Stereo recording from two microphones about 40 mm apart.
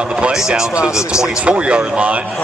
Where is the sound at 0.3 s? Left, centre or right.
Centre.